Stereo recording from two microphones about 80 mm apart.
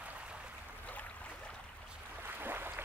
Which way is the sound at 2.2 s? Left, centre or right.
Right.